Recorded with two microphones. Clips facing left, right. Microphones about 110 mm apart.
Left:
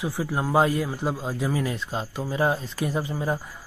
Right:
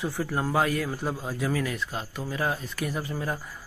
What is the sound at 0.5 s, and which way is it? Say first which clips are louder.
A man's voice: left 5 dB; 25° left (ahead or behind).